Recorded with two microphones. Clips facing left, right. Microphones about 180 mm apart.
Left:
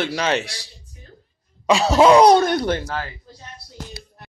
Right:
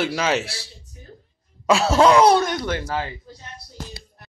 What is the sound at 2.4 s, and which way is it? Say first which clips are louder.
Speech: left 4 dB; 30° left (ahead or behind).